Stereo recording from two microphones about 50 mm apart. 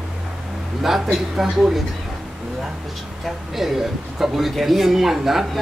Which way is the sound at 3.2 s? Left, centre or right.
Centre.